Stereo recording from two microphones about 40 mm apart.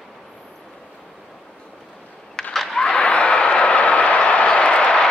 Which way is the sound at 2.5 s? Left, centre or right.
Centre.